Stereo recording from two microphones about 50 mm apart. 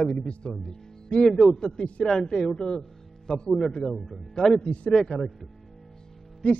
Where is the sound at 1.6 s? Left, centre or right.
Centre.